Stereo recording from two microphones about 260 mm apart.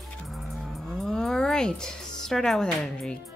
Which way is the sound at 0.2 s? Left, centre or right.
Centre.